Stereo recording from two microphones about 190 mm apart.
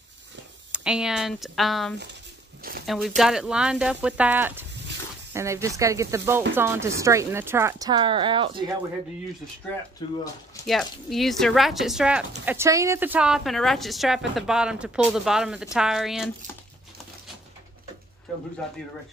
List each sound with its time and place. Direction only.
0.7 s speech: 5° right (ahead or behind)
2.6 s speech: 50° right (ahead or behind)
3.2 s a woman's voice: 5° right (ahead or behind); by 8.6 s 25° right (ahead or behind)
9.9 s speech: 20° left (ahead or behind)
10.7 s speech: centre (ahead or behind)